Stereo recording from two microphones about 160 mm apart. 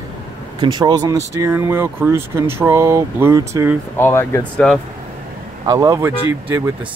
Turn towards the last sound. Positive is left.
turn(degrees=-15)  # may be behind; listen again after turning